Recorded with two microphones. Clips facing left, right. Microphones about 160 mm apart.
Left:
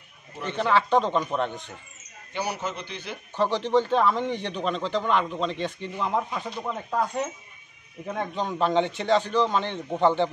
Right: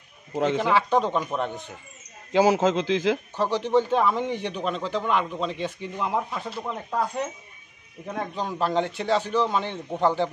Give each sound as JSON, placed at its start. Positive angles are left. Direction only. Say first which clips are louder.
{"t": 0.6, "sound": "a man's voice", "louder": "left 3 dB", "side_deg": -10}
{"t": 2.3, "sound": "a man's voice", "louder": "right 11 dB", "side_deg": -90}
{"t": 3.3, "sound": "a man's voice", "louder": "left 3 dB", "side_deg": -10}